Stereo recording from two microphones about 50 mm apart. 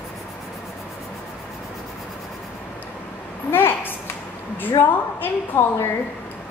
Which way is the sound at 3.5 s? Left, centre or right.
Left.